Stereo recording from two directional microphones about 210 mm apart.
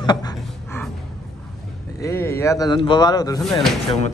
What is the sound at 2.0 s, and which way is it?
A man's voice, 10° left (ahead or behind).